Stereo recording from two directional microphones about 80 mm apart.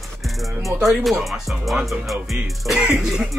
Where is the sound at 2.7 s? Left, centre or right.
Centre.